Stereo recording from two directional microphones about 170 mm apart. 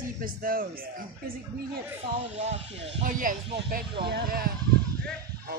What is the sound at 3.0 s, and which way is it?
A man's voice, 55° right (ahead or behind).